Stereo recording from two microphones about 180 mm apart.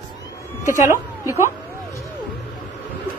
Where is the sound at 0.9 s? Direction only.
15° right (ahead or behind).